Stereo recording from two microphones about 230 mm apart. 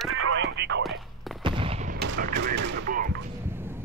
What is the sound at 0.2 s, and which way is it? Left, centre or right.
Radio, right.